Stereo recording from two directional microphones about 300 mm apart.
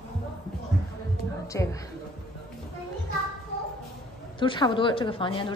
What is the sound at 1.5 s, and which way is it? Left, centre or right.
Speech, centre.